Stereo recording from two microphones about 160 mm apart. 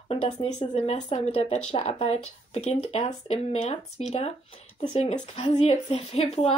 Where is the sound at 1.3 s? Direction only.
35° left (ahead or behind).